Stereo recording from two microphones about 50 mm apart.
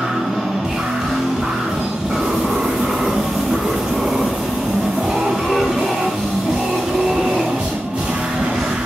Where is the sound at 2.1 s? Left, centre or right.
Centre.